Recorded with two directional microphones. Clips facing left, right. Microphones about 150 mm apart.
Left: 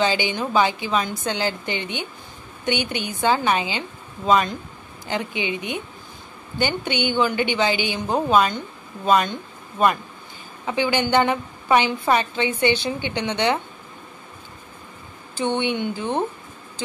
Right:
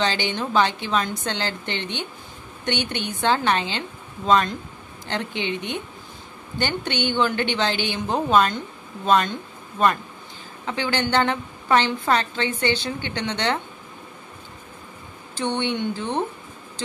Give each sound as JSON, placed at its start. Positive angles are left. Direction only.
{"t": 0.0, "sound": "a woman's voice", "side_deg": 10}
{"t": 15.3, "sound": "a woman's voice", "side_deg": 10}